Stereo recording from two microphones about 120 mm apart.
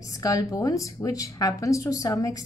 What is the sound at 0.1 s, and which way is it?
A woman's voice, 30° left (ahead or behind).